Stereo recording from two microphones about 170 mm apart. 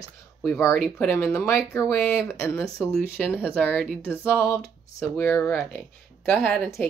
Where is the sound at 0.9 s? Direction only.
15° left (ahead or behind).